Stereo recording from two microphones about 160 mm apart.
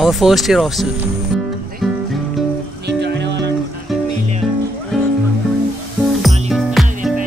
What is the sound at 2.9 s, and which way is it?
Music, 90° right.